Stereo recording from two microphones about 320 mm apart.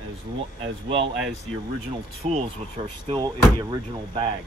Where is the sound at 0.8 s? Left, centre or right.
Centre.